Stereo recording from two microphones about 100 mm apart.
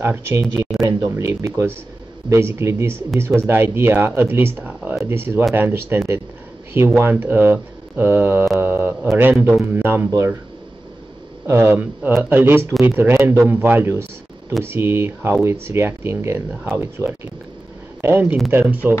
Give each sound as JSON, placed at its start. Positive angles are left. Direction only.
{"t": 0.0, "sound": "speech", "side_deg": -25}
{"t": 0.6, "sound": "speech", "side_deg": -5}
{"t": 1.1, "sound": "speech", "side_deg": -30}
{"t": 11.4, "sound": "speech", "side_deg": -25}